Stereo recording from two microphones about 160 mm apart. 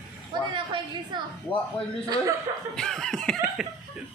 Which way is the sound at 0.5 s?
30° right (ahead or behind).